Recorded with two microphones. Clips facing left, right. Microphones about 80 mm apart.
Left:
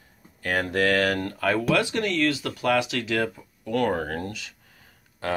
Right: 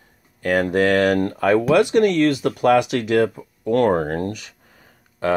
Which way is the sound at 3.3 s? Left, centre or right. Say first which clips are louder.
Right 8 dB; right.